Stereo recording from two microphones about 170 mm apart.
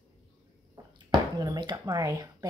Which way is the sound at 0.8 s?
20° right (ahead or behind).